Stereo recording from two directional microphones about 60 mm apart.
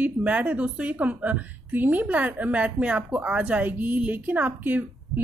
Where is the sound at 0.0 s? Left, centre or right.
Right.